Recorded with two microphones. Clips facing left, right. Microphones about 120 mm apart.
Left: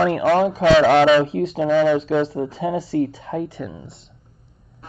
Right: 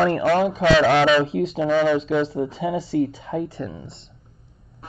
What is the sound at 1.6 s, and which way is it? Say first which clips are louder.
Speech: left 3 dB; 45° left (ahead or behind).